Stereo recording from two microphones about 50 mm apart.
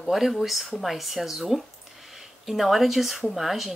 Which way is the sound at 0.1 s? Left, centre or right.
Centre.